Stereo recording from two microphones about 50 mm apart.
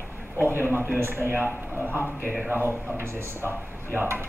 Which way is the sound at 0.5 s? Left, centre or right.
Right.